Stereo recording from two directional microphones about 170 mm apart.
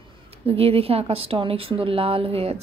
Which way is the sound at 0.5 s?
35° right (ahead or behind).